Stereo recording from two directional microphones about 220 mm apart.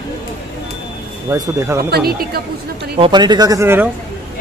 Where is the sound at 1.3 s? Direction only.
15° right (ahead or behind).